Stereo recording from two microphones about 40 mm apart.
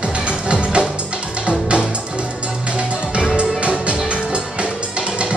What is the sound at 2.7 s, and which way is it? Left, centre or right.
Music, right.